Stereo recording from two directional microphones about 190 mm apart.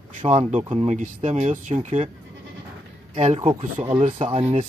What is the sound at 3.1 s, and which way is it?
Speech, 35° right (ahead or behind).